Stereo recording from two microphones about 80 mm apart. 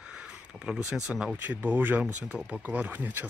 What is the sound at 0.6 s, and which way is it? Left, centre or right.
Speech, centre.